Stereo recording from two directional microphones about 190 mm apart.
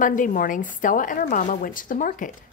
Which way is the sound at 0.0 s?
45° left (ahead or behind).